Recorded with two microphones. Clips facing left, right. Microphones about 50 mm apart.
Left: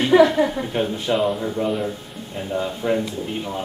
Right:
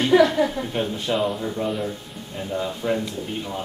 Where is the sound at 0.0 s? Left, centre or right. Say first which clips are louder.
Left 2 dB; centre.